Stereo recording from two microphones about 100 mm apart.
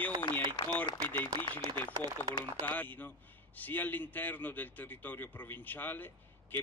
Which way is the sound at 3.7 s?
20° left (ahead or behind).